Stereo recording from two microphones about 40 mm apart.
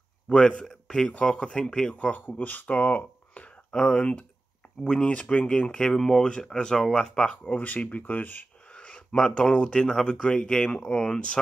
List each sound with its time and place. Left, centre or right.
0.3 s speech: left
2.0 s speech: left
2.2 s speech: left
3.7 s speech: left
5.9 s speech: centre
7.4 s speech: left
8.6 s a sound: left
9.3 s speech: left